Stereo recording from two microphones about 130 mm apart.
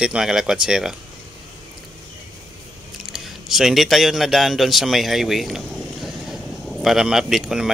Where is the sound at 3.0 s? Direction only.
Centre (ahead or behind).